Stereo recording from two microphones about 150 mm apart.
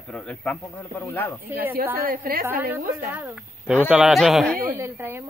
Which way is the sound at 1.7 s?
80° right.